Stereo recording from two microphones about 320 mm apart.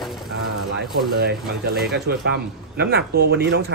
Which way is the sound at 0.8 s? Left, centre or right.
Right.